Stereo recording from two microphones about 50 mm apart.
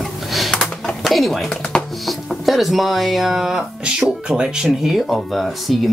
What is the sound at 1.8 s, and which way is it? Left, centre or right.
Chopping, centre.